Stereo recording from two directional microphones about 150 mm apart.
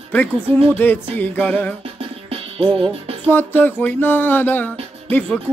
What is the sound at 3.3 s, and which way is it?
Music, 10° left (ahead or behind).